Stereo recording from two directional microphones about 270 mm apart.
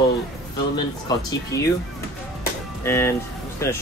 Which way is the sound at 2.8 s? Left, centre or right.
Centre.